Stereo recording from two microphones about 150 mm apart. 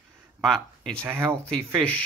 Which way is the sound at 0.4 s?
5° left (ahead or behind).